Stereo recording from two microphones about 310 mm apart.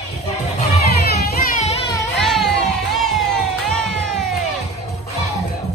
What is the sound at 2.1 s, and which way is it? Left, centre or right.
Music, centre.